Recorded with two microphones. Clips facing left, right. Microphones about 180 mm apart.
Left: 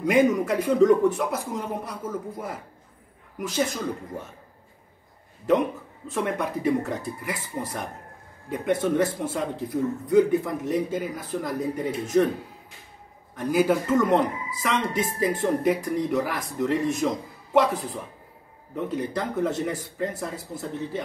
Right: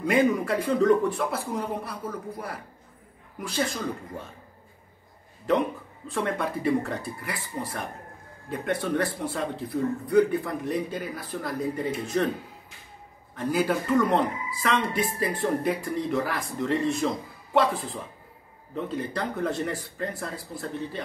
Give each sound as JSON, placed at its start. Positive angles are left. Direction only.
{"t": 0.0, "sound": "speech", "side_deg": 15}
{"t": 3.6, "sound": "speech", "side_deg": 20}
{"t": 6.0, "sound": "speech", "side_deg": 20}
{"t": 13.4, "sound": "speech", "side_deg": 15}